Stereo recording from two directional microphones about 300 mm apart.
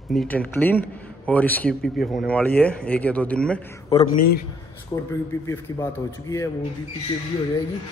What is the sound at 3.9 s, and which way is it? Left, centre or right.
Speech, centre.